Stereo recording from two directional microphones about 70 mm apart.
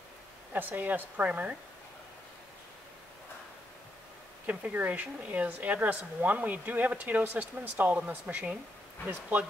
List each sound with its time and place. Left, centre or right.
0.5 s speech: right
4.5 s speech: right